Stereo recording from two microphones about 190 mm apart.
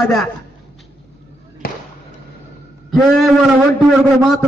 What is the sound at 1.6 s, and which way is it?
Basketball bounce, 50° left (ahead or behind).